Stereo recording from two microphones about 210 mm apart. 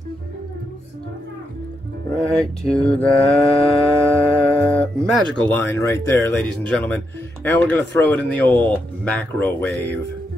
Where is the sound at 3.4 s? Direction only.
30° left (ahead or behind).